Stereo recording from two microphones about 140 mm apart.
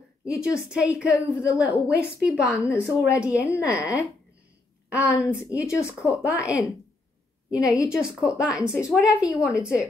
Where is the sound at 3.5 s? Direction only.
10° right (ahead or behind).